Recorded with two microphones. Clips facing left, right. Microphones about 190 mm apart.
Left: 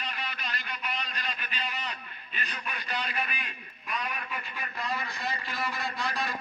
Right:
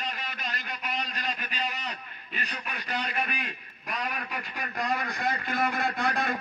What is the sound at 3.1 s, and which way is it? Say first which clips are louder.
Radio: right 3 dB; 45° right (ahead or behind).